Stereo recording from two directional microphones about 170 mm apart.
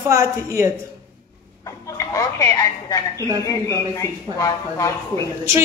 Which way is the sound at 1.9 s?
20° left (ahead or behind).